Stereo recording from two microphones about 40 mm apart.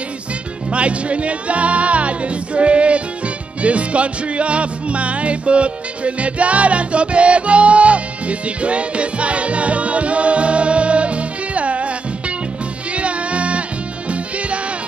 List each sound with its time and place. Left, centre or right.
0.7 s speech: right
3.6 s music: right
12.9 s music: right